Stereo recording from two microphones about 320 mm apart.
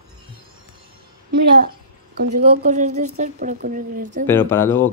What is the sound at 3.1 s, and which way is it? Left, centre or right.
Speech, right.